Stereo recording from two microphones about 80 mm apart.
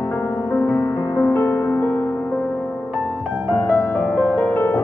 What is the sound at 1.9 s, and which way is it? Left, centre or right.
Music, centre.